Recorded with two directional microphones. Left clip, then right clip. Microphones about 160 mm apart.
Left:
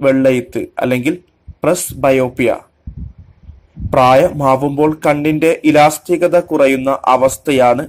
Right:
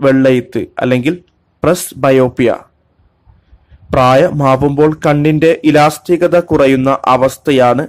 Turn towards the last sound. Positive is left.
turn(degrees=-30)  # may be behind; listen again after turning